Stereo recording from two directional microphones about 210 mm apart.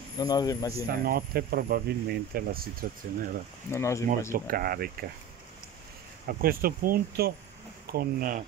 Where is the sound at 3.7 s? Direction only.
15° left (ahead or behind).